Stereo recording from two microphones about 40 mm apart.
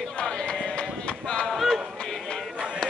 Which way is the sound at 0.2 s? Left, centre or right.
Left.